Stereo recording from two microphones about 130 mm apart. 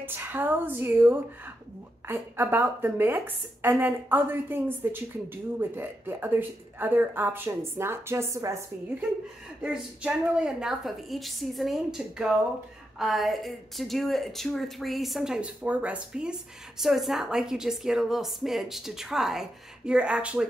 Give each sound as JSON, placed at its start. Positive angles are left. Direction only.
{"t": 0.0, "sound": "speech", "side_deg": -15}
{"t": 9.6, "sound": "speech", "side_deg": -10}